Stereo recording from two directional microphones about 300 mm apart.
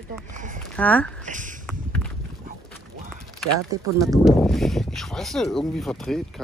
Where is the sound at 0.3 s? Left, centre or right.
Right.